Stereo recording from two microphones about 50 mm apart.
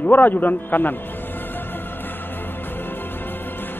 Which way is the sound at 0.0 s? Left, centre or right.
Left.